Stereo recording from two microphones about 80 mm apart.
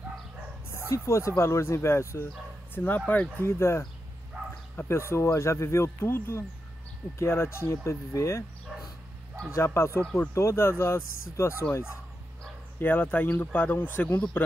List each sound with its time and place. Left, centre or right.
0.7 s speech: left
2.7 s speech: left
4.8 s speech: left
9.5 s speech: left
12.7 s speech: left